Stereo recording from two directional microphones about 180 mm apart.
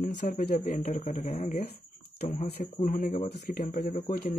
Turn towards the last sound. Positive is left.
turn(degrees=50)  # may be behind; listen again after turning